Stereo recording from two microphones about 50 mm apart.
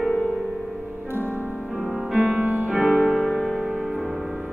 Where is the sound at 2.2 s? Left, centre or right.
Right.